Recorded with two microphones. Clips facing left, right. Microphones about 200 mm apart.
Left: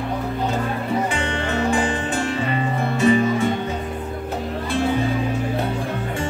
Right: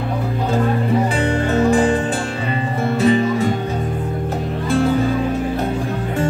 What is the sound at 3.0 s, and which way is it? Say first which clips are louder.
Music: right 1 dB; 35° right (ahead or behind).